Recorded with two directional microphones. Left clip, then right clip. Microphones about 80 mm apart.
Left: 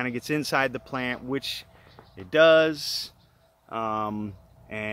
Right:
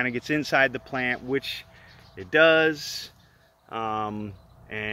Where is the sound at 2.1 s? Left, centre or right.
Left.